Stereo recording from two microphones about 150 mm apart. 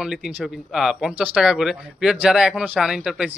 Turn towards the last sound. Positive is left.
turn(degrees=-5)  # may be behind; listen again after turning